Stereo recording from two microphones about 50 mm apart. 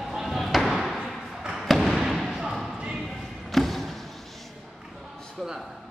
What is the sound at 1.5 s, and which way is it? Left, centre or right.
Basketball bounce, centre.